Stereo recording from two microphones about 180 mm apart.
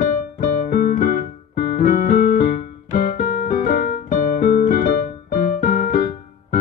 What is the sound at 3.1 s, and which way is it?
Piano, 55° left (ahead or behind).